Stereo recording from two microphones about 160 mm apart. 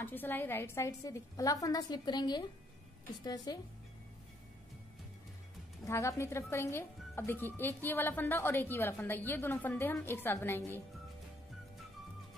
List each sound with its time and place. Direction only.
0.0 s a woman's voice: 10° left (ahead or behind)
5.9 s a woman's voice: 15° left (ahead or behind)